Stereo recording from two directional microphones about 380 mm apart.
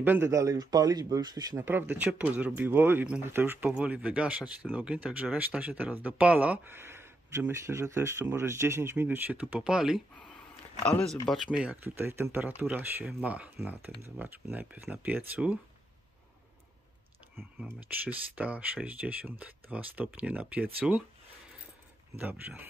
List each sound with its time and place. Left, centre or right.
0.0 s speech: centre
17.4 s speech: centre
22.2 s speech: centre